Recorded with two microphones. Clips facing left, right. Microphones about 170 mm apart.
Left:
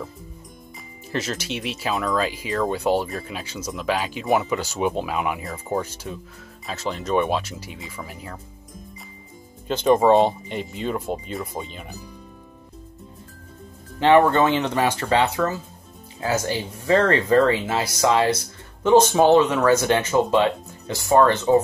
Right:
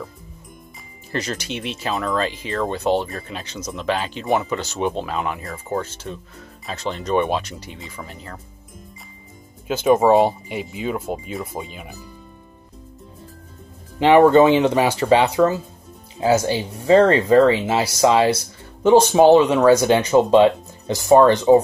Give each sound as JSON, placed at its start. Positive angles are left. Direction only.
{"t": 1.1, "sound": "speech", "side_deg": 0}
{"t": 6.6, "sound": "speech", "side_deg": 0}
{"t": 9.7, "sound": "speech", "side_deg": -5}
{"t": 13.9, "sound": "speech", "side_deg": -15}